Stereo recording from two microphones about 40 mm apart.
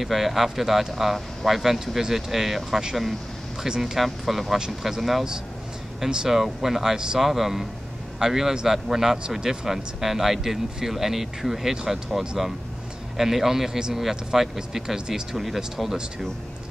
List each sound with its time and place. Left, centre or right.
0.0 s speech: centre
3.8 s speech: centre
6.2 s speech: centre
13.7 s speech: centre
14.0 s speech: centre